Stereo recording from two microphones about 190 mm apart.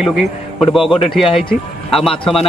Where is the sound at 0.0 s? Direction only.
Centre (ahead or behind).